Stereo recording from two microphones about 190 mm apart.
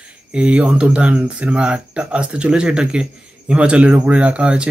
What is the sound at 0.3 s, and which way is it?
Speech, 5° right (ahead or behind).